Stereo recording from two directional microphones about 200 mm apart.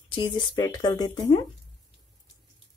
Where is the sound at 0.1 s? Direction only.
20° left (ahead or behind).